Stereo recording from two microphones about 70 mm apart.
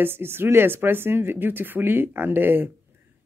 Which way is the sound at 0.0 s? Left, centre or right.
Right.